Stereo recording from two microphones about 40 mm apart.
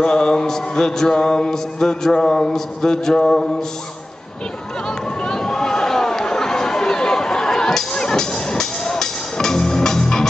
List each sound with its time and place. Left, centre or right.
0.0 s music: centre
4.8 s chatter: centre